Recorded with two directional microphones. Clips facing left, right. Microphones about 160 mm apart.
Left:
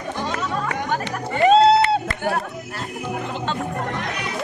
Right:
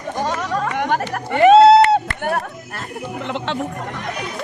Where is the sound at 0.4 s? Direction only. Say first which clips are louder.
Right 4 dB; 70° right (ahead or behind).